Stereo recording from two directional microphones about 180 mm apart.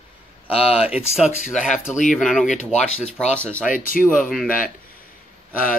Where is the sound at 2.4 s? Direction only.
40° left (ahead or behind).